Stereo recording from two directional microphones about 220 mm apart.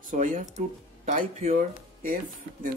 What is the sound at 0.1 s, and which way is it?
Speech, 35° right (ahead or behind).